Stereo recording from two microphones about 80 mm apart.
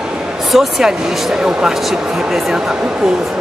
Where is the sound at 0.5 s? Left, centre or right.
Centre.